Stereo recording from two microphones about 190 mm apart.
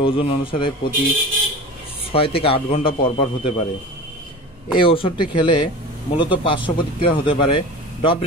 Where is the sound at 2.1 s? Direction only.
30° left (ahead or behind).